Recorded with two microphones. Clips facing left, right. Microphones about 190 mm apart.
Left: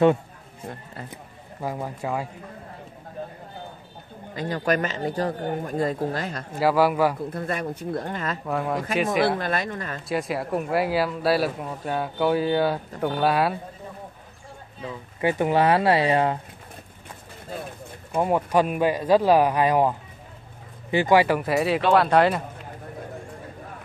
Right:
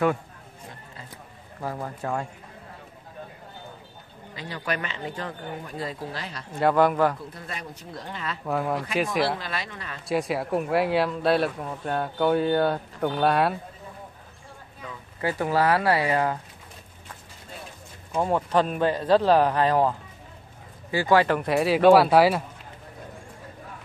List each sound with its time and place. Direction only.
1.1 s a sound: 15° left (ahead or behind)
4.4 s speech: 45° left (ahead or behind)
6.5 s speech: 5° left (ahead or behind)
7.3 s speech: 55° left (ahead or behind)
8.5 s speech: centre (ahead or behind)
9.4 s speech: 50° left (ahead or behind)
10.0 s speech: centre (ahead or behind)
14.8 s speech: 25° left (ahead or behind)
18.1 s speech: 10° left (ahead or behind); by 22.4 s 5° right (ahead or behind)